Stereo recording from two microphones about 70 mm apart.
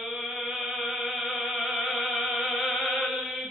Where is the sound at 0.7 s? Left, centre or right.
Centre.